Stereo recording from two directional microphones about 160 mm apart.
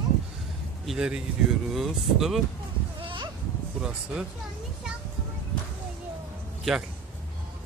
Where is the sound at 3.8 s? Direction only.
5° right (ahead or behind).